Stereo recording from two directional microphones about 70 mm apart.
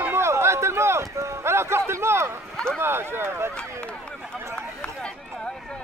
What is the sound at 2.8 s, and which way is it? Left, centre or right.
Run, right.